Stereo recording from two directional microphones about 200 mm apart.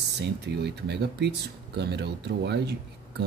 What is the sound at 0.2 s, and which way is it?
Speech, 55° right (ahead or behind).